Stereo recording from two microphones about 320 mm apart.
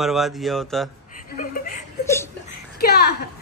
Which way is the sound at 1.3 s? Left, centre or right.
Left.